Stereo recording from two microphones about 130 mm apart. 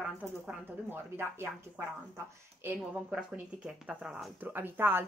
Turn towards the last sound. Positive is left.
turn(degrees=-15)  # may be behind; listen again after turning